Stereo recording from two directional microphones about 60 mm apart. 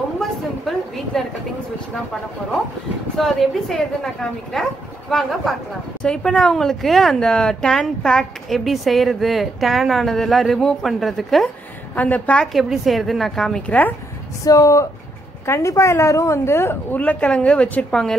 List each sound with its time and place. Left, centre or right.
0.2 s a sound: centre
3.2 s speech: centre
6.0 s speech: centre
11.9 s a woman's voice: left
12.5 s speech: centre
13.7 s a woman's voice: left
14.4 s speech: left
15.4 s a woman's voice: left
16.9 s a woman's voice: left